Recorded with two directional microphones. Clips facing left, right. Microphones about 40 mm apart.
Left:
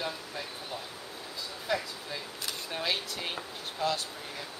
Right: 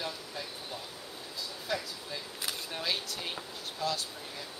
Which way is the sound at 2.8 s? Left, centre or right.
Left.